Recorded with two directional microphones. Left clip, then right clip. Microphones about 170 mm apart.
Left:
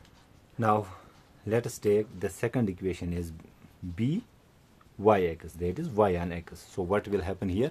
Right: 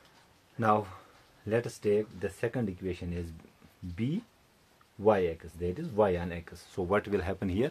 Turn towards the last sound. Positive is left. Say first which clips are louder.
# left 1 dB
turn(degrees=15)  # may be behind; listen again after turning